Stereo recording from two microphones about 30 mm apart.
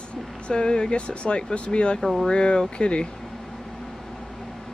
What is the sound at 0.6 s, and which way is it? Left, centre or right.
Speech, left.